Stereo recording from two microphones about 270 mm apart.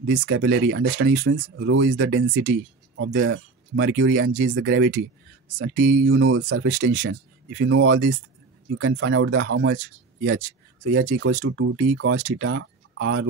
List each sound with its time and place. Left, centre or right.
0.0 s speech: right
7.1 s speech: right